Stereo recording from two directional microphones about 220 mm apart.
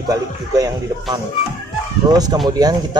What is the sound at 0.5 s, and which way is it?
Speech, 15° right (ahead or behind).